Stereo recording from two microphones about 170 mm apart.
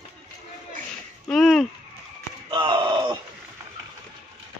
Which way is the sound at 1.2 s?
Centre (ahead or behind).